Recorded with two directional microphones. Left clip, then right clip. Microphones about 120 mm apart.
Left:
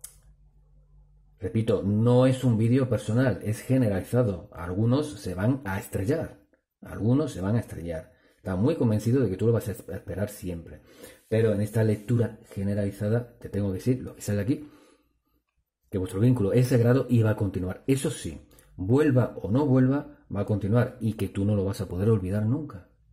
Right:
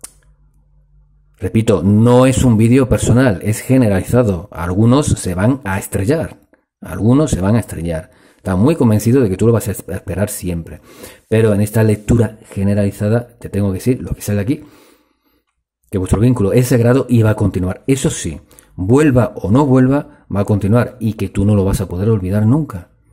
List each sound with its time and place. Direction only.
1.4 s speech: 45° right (ahead or behind)
14.2 s speech: 30° right (ahead or behind)
15.9 s speech: 35° right (ahead or behind)
21.1 s speech: 30° right (ahead or behind)
21.5 s speech: 45° right (ahead or behind)
21.8 s speech: 20° right (ahead or behind)
22.5 s speech: 55° right (ahead or behind)